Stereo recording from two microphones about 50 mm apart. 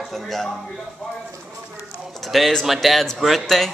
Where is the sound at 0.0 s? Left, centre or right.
Centre.